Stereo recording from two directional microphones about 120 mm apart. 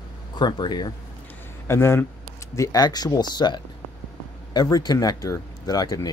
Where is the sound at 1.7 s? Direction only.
20° left (ahead or behind).